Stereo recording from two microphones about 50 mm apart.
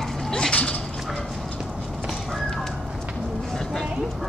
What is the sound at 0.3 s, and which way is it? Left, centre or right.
Dog, centre.